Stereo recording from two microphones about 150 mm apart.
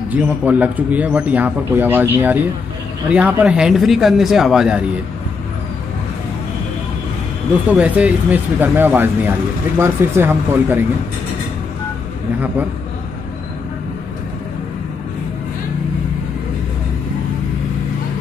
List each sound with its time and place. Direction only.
0.1 s a man's voice: 10° right (ahead or behind)
7.6 s a man's voice: 10° right (ahead or behind)